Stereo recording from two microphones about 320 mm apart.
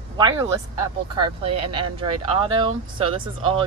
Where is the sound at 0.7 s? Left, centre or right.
Right.